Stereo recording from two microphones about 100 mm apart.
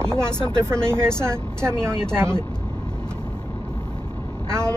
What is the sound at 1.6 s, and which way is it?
Speech, 25° right (ahead or behind).